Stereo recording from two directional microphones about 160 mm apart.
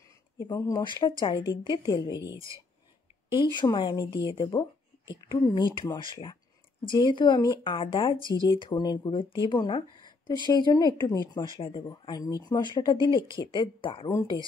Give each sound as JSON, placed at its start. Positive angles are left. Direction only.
{"t": 0.4, "sound": "speech", "side_deg": 20}
{"t": 2.3, "sound": "speech", "side_deg": -20}
{"t": 3.3, "sound": "speech", "side_deg": 30}
{"t": 8.2, "sound": "speech", "side_deg": -20}
{"t": 8.5, "sound": "a woman's voice", "side_deg": 25}